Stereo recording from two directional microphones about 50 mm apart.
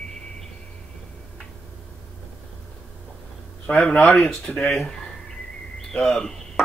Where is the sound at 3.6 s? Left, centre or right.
Left.